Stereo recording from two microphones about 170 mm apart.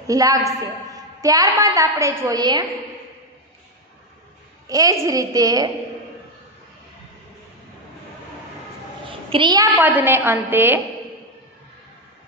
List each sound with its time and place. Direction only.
0.0 s a man's voice: 20° right (ahead or behind)
4.6 s a woman's voice: 20° right (ahead or behind)
9.3 s a woman's voice: 25° right (ahead or behind)
9.8 s a woman's voice: 10° right (ahead or behind)